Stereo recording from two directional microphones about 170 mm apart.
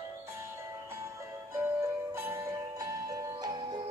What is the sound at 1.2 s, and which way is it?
Music, 15° right (ahead or behind).